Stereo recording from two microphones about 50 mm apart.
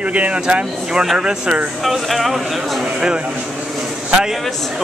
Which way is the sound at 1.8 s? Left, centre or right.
Centre.